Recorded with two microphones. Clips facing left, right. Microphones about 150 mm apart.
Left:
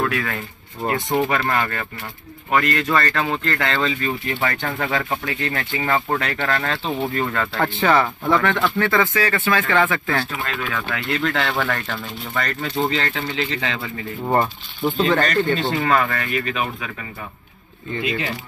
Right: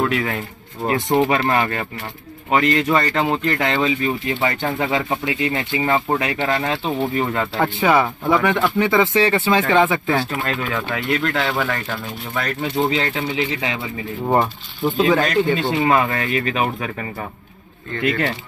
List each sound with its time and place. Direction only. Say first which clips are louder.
0.0 s speech: right 3 dB; 20° right (ahead or behind)
11.1 s speech: right 1 dB; 5° right (ahead or behind)
16.1 s speech: right 3 dB; 40° right (ahead or behind)